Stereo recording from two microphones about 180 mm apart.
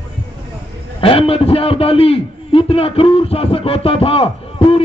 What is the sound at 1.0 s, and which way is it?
A man's voice, 30° left (ahead or behind).